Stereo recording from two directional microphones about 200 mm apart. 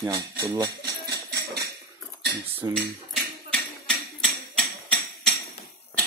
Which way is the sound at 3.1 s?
5° left (ahead or behind).